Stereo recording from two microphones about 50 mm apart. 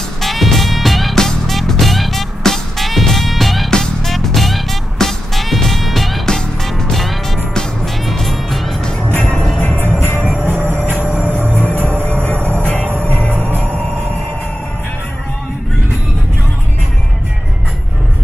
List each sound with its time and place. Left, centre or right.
0.2 s music: centre
9.2 s music: centre
9.8 s music: right
11.4 s music: left